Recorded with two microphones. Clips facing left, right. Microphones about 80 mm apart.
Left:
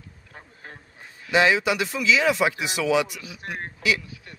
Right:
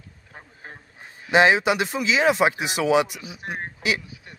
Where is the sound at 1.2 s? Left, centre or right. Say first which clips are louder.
Right 3 dB; right.